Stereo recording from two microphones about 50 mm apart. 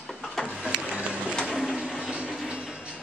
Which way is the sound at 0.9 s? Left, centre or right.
Right.